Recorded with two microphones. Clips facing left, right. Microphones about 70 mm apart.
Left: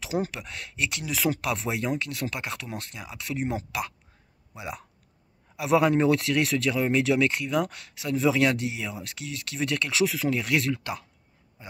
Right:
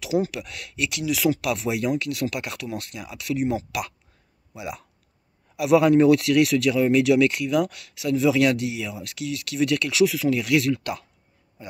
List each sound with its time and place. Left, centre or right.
0.0 s speech: left
10.8 s speech: left